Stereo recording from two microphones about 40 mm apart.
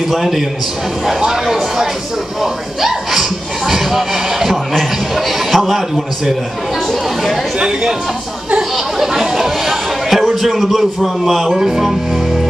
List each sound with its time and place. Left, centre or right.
0.1 s speech: centre
7.5 s speech: centre
8.7 s chatter: centre
10.4 s speech: centre